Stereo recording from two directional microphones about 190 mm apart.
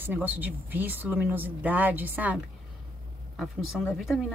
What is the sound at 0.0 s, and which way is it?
Speech, 10° right (ahead or behind).